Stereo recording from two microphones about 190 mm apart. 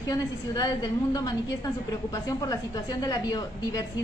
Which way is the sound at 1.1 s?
20° left (ahead or behind).